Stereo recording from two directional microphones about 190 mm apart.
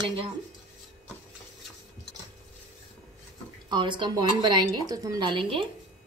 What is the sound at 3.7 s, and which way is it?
A woman's voice, 25° right (ahead or behind).